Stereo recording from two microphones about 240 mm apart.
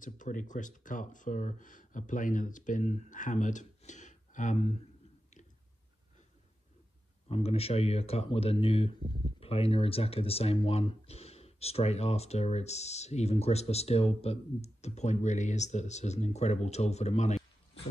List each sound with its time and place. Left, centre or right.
0.0 s speech: left
7.2 s speech: left